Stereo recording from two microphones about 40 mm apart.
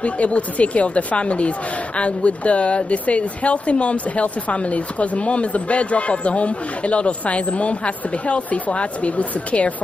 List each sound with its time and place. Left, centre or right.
0.0 s speech: left